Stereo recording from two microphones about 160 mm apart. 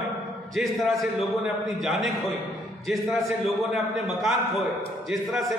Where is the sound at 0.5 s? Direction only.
Centre (ahead or behind).